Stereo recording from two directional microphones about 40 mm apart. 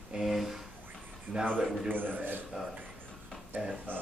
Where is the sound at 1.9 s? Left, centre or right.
Right.